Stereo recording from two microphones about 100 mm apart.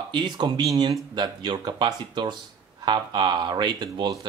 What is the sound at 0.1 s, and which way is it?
Speech, 50° right (ahead or behind).